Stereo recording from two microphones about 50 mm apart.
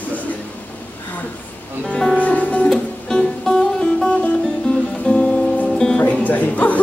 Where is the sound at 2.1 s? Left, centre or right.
Left.